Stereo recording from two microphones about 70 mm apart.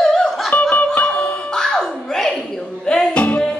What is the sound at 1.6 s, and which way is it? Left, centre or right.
Music, centre.